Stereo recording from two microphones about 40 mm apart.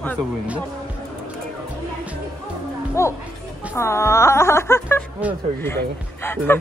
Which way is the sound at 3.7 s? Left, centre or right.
Left.